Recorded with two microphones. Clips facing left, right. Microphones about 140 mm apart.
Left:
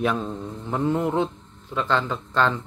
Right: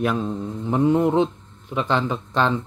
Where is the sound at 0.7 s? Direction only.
20° right (ahead or behind).